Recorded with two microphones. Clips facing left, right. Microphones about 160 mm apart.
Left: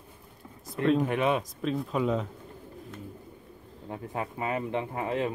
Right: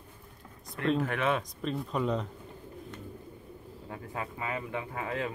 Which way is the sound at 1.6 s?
Centre (ahead or behind).